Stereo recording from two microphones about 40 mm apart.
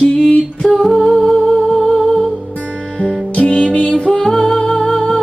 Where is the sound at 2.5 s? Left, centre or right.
Left.